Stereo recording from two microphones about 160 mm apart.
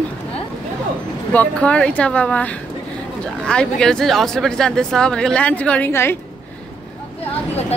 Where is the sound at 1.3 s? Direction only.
10° left (ahead or behind).